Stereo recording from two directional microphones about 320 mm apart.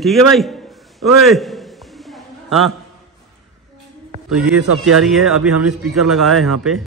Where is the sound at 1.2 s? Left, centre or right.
Centre.